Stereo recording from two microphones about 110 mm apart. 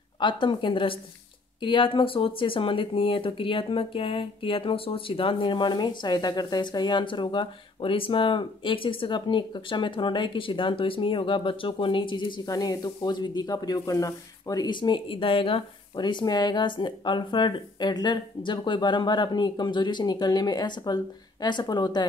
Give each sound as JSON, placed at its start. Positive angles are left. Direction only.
{"t": 0.2, "sound": "speech", "side_deg": 45}
{"t": 12.4, "sound": "speech", "side_deg": 35}